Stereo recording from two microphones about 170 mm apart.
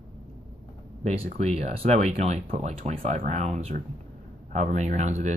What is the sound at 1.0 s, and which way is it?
Speech, 40° right (ahead or behind).